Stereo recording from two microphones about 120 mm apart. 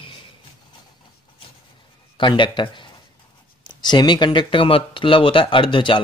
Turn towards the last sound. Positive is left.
turn(degrees=45)  # may be behind; listen again after turning